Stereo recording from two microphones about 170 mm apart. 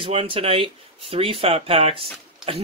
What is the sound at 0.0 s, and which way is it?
Speech, 30° right (ahead or behind).